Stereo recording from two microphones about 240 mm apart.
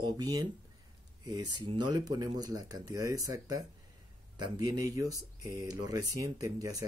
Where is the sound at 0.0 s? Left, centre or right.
Centre.